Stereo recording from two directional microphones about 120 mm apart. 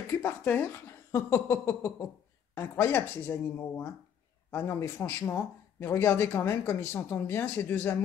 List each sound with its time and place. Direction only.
0.2 s speech: 15° left (ahead or behind)